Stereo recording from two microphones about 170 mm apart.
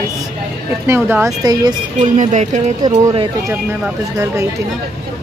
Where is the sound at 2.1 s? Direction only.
45° right (ahead or behind).